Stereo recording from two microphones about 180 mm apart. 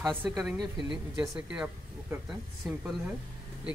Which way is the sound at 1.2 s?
5° right (ahead or behind).